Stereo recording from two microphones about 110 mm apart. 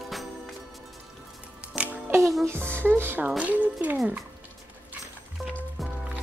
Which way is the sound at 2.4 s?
20° right (ahead or behind).